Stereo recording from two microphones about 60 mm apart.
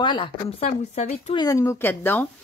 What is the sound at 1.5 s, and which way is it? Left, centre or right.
Speech, left.